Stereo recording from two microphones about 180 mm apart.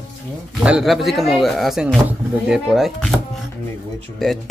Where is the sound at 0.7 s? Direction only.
Centre (ahead or behind).